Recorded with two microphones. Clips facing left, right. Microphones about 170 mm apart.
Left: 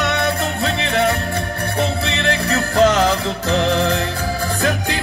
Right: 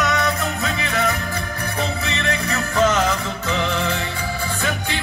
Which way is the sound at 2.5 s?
35° left (ahead or behind).